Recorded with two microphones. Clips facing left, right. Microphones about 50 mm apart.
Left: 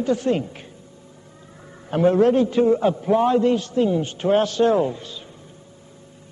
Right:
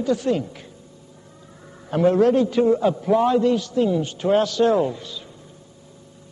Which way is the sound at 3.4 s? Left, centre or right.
Left.